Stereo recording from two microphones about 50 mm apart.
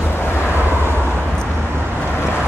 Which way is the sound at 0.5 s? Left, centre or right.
Right.